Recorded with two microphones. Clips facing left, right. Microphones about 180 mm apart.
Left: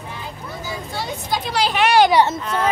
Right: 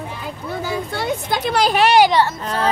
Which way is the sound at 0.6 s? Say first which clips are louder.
Right 5 dB; 60° right (ahead or behind).